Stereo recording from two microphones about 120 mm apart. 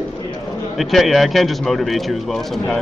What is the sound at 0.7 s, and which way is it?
Speech, centre (ahead or behind).